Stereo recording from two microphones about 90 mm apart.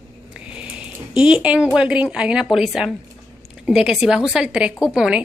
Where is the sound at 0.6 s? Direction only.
10° right (ahead or behind).